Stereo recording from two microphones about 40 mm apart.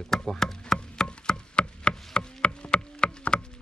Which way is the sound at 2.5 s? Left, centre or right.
Left.